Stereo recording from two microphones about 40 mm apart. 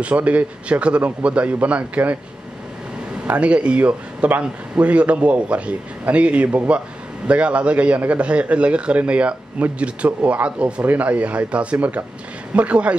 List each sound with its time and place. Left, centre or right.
0.0 s speech: right
3.3 s speech: right